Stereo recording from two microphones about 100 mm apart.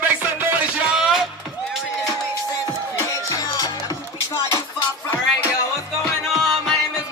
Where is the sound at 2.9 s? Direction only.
35° left (ahead or behind).